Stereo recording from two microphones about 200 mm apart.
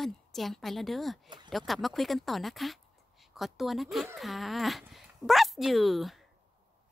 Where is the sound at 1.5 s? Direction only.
Centre (ahead or behind).